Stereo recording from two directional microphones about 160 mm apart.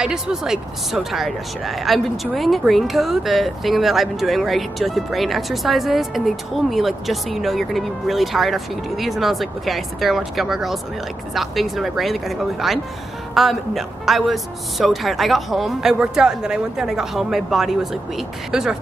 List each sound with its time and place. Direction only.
0.0 s speech: 5° right (ahead or behind)